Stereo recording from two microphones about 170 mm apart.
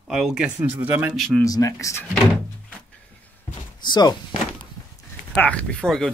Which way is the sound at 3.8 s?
25° left (ahead or behind).